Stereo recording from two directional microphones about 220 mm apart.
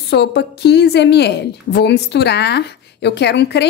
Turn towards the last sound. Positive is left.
turn(degrees=50)  # may be behind; listen again after turning